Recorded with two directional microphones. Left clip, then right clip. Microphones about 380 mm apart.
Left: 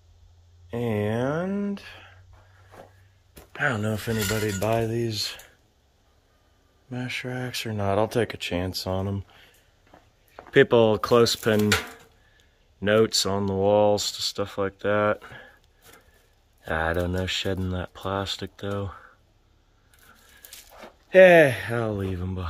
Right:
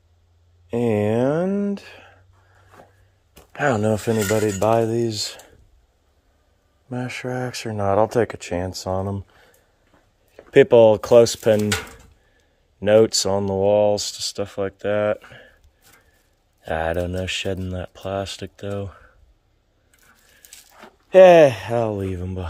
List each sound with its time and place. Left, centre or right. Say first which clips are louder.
0.7 s a sound: right 7 dB; right
3.5 s speech: right 6 dB; centre
6.9 s speech: right 4 dB; centre
10.5 s speech: right 6 dB; centre
12.8 s speech: right 6 dB; centre
16.6 s speech: right 3 dB; centre
20.7 s speech: right 4 dB; centre